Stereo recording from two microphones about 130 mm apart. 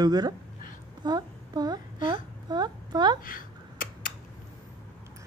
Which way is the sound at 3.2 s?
90° left.